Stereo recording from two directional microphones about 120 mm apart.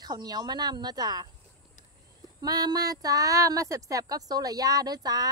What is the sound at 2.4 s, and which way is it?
A woman's voice, 35° right (ahead or behind).